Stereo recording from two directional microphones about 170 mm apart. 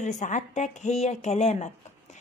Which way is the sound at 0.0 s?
45° left (ahead or behind).